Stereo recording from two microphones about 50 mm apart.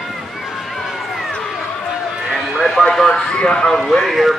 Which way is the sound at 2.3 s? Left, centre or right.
Centre.